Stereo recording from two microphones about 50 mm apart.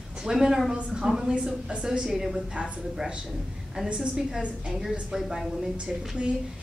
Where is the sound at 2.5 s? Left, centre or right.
Right.